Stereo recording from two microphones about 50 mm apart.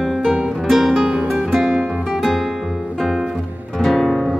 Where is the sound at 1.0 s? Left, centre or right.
Right.